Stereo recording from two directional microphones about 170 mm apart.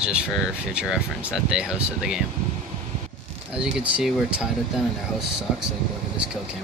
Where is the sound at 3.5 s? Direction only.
5° right (ahead or behind).